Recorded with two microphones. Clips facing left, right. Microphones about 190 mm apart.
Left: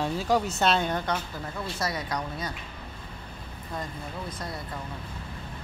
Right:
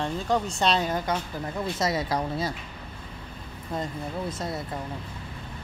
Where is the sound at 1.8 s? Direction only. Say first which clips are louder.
Right 5 dB; 25° right (ahead or behind).